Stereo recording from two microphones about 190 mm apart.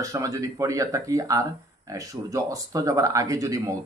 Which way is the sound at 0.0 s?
15° right (ahead or behind).